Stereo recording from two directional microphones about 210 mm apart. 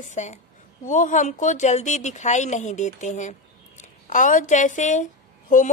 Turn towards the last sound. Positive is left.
turn(degrees=35)  # may be behind; listen again after turning